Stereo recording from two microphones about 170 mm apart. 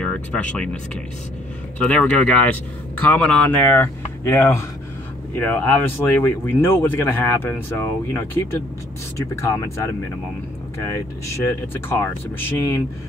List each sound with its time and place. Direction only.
0.0 s speech: 5° left (ahead or behind)
1.8 s speech: 5° left (ahead or behind)
11.3 s speech: 15° left (ahead or behind)